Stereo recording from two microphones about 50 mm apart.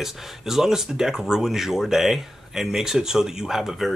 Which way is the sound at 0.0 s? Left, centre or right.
Centre.